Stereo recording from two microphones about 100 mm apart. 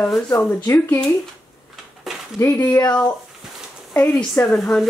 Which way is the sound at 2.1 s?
Centre (ahead or behind).